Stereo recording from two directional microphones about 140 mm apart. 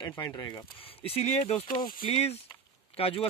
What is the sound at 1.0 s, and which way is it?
Speech, 45° left (ahead or behind).